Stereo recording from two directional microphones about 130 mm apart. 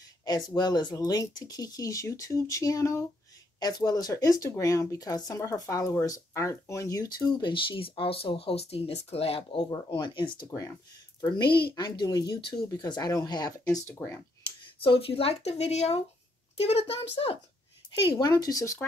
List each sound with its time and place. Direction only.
0.2 s speech: 30° left (ahead or behind); by 9.7 s 45° left (ahead or behind)
9.7 s speech: 30° left (ahead or behind)
10.5 s speech: 25° left (ahead or behind)
13.7 s speech: 20° left (ahead or behind)
14.6 s speech: 40° left (ahead or behind)
18.0 s speech: 35° left (ahead or behind)